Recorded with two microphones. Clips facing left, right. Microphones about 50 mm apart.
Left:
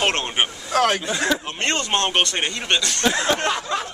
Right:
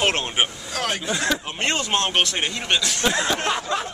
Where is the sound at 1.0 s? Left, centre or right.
Centre.